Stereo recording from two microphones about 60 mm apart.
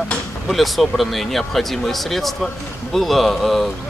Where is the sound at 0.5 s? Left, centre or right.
Centre.